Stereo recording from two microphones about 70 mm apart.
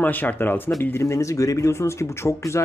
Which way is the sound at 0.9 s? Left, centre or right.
Left.